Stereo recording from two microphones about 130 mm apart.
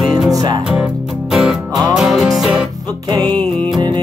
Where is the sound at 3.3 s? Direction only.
10° left (ahead or behind).